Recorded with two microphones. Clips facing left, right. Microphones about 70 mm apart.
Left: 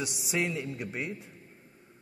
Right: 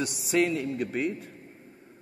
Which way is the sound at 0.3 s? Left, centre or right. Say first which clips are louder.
Right 7 dB; centre.